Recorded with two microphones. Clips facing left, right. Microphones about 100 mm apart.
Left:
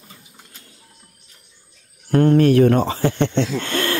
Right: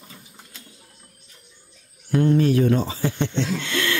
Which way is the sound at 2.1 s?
60° left (ahead or behind).